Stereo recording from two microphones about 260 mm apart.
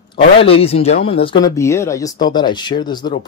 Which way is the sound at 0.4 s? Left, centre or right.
Left.